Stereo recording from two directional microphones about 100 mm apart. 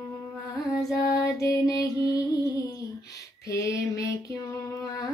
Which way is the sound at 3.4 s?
35° left (ahead or behind).